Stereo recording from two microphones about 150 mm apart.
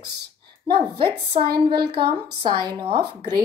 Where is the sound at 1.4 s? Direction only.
90° right.